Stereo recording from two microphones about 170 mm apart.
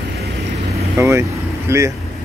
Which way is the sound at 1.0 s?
15° right (ahead or behind).